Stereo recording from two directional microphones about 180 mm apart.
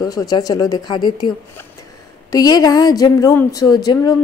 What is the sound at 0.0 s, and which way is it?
A woman's voice, 20° left (ahead or behind).